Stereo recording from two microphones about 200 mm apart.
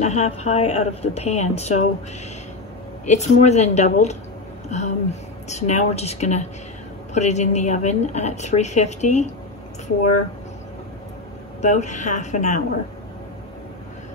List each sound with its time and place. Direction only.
0.0 s a woman's voice: 35° left (ahead or behind)
3.1 s a woman's voice: 35° left (ahead or behind)
11.6 s a woman's voice: 35° left (ahead or behind)